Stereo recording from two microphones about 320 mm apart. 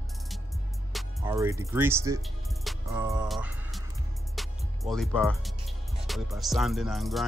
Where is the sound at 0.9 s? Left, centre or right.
Centre.